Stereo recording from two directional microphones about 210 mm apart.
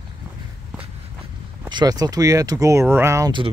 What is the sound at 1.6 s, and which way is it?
Speech, 20° right (ahead or behind).